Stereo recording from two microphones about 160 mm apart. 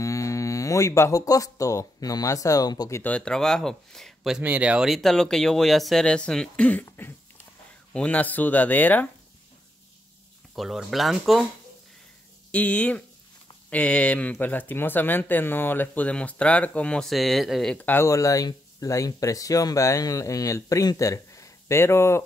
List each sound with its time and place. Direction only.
0.0 s speech: 20° left (ahead or behind)
3.0 s speech: 10° left (ahead or behind)
10.5 s speech: centre (ahead or behind)
12.4 s speech: 10° left (ahead or behind)